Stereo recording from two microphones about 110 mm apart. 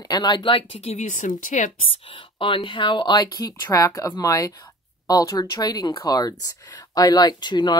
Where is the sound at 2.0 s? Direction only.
50° left (ahead or behind).